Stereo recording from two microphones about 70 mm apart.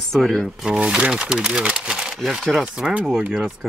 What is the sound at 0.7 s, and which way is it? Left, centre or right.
Speech, centre.